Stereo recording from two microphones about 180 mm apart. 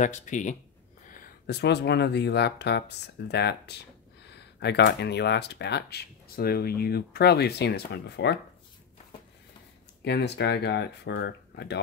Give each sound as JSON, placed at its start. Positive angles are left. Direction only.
{"t": 0.0, "sound": "speech", "side_deg": 45}
{"t": 10.0, "sound": "speech", "side_deg": 65}